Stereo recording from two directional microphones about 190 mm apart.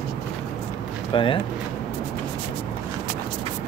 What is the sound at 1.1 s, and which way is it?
Speech, 25° left (ahead or behind).